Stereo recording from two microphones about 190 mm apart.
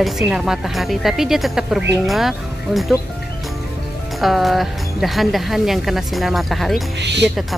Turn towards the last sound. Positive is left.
turn(degrees=-65)  # may be behind; listen again after turning